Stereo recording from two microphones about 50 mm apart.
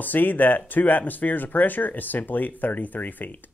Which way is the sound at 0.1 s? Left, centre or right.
Left.